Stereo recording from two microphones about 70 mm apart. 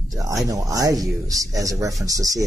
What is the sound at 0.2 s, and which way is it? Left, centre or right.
Speech, right.